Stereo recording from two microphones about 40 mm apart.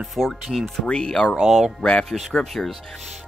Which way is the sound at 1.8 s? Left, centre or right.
Left.